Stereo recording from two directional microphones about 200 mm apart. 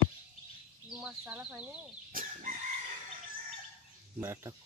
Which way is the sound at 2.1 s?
45° right (ahead or behind).